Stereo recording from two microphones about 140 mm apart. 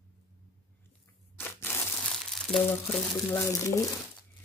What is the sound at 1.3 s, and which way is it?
Crushing, 15° left (ahead or behind).